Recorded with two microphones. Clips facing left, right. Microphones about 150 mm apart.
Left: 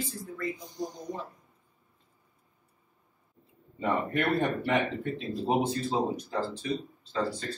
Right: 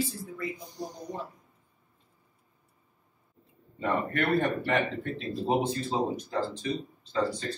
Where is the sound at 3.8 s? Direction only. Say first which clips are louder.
Even; 10° left (ahead or behind).